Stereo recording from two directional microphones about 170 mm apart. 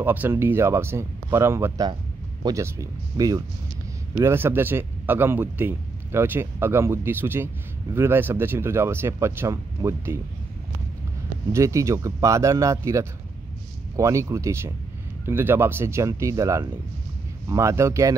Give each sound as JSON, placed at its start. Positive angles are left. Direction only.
{"t": 0.0, "sound": "speech", "side_deg": -10}
{"t": 11.5, "sound": "speech", "side_deg": -20}